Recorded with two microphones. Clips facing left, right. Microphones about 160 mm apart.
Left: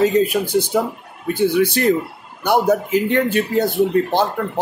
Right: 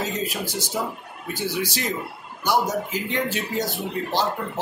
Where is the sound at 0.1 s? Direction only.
60° left (ahead or behind).